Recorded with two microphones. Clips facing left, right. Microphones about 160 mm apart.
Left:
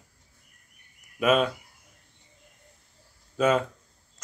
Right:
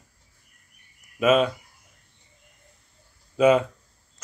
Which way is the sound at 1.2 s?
5° right (ahead or behind).